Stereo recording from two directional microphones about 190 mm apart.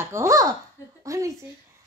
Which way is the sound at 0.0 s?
15° right (ahead or behind).